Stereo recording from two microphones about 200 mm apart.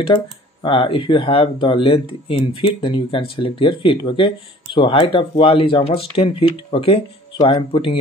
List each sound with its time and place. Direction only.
0.0 s speech: 25° left (ahead or behind)